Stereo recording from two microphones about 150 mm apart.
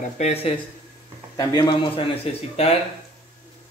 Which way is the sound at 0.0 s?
45° left (ahead or behind).